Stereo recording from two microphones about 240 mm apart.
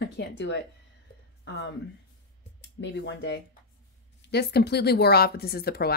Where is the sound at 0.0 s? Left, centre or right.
Left.